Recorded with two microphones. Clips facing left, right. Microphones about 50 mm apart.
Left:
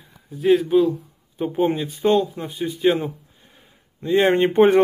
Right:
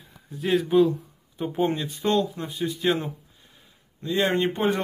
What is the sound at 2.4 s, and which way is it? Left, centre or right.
Speech, centre.